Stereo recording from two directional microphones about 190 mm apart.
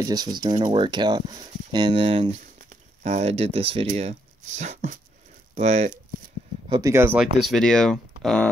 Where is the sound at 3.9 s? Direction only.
40° right (ahead or behind).